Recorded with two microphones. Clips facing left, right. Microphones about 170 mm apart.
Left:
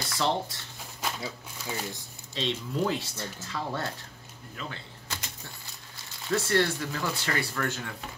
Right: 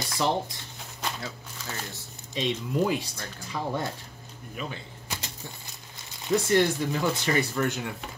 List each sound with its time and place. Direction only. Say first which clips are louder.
0.1 s speech: right 2 dB; 15° right (ahead or behind)
1.0 s speech: even; 10° left (ahead or behind)
2.3 s speech: right 3 dB; 15° right (ahead or behind)
4.6 s a sound: right 4 dB; 15° right (ahead or behind)
6.2 s speech: right 3 dB; 15° right (ahead or behind)